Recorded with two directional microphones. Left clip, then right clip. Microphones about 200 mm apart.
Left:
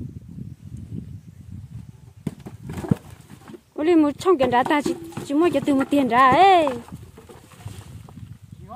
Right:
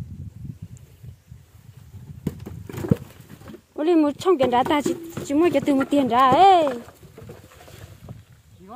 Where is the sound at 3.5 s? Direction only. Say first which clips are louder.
Left 1 dB; 10° left (ahead or behind).